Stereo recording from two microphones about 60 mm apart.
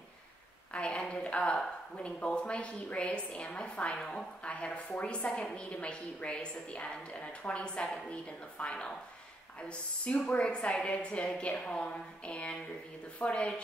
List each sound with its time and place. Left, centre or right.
0.7 s a woman's voice: centre